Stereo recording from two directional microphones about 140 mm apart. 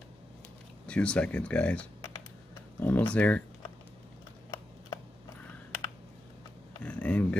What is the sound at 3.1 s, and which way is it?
Speech, 10° left (ahead or behind).